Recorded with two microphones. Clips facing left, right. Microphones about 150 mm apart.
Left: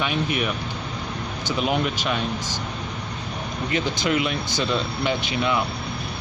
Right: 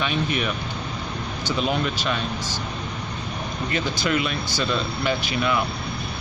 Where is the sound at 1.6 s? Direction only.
15° left (ahead or behind).